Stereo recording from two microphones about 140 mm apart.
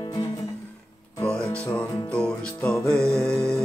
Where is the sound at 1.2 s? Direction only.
10° left (ahead or behind).